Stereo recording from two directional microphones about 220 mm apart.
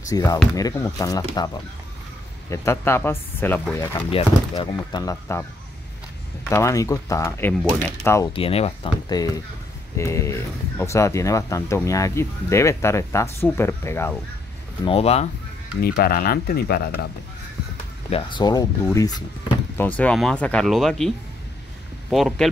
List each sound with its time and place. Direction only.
0.1 s speech: 15° left (ahead or behind)
2.5 s speech: 10° left (ahead or behind)
4.1 s speech: 20° left (ahead or behind)
6.5 s speech: 15° left (ahead or behind)
8.3 s speech: 25° left (ahead or behind)
14.9 s speech: 30° left (ahead or behind)
15.8 s speech: 45° left (ahead or behind)
18.1 s speech: 20° left (ahead or behind)
20.0 s speech: 5° left (ahead or behind)
22.1 s speech: centre (ahead or behind)